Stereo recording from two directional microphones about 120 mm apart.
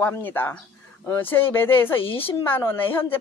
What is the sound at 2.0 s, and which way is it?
Speech, 50° left (ahead or behind).